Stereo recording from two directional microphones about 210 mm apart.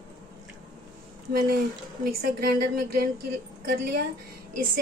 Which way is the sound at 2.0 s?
45° right (ahead or behind).